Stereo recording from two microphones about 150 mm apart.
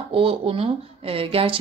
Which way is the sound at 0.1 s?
35° right (ahead or behind).